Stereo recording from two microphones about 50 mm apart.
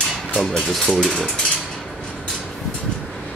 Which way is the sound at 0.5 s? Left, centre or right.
Centre.